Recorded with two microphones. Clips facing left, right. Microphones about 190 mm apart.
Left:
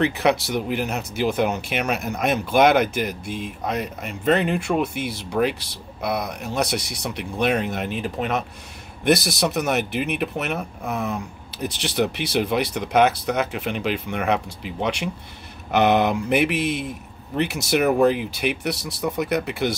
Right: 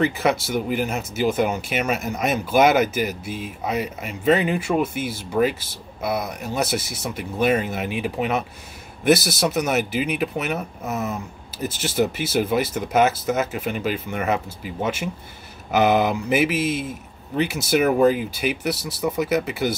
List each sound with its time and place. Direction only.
0.0 s speech: centre (ahead or behind)